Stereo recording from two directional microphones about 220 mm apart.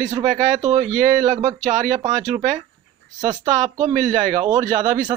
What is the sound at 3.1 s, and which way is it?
Speech, 20° right (ahead or behind).